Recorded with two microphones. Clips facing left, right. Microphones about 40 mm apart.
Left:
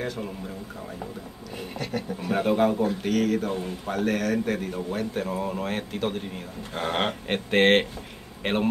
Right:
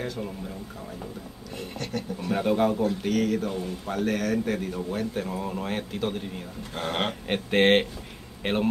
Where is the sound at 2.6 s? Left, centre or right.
Centre.